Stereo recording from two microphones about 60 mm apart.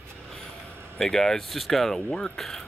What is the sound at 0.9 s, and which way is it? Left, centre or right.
Speech, centre.